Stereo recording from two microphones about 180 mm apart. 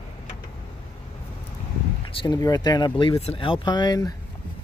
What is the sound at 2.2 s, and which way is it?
Speech, 25° left (ahead or behind).